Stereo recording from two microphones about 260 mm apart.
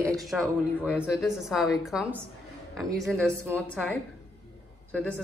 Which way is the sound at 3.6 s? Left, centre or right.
Centre.